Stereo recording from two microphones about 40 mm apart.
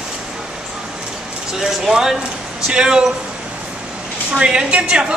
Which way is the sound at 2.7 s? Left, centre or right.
Centre.